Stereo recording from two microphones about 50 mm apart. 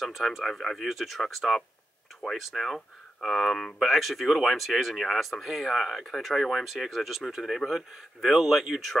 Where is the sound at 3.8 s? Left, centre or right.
Centre.